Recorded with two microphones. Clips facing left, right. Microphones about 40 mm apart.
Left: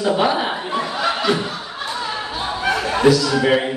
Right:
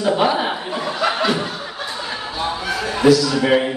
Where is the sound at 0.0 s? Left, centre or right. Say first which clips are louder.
Even; centre.